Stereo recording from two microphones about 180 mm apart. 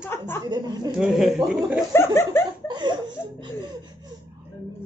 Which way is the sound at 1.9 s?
15° left (ahead or behind).